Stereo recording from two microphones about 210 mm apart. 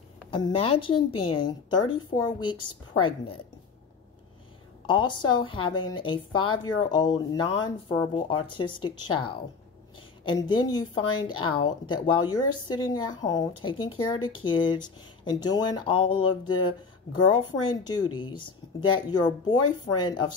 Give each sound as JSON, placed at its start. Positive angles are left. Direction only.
{"t": 0.3, "sound": "speech", "side_deg": 25}
{"t": 4.8, "sound": "speech", "side_deg": 20}